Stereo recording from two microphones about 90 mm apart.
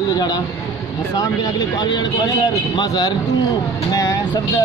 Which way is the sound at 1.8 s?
50° left (ahead or behind).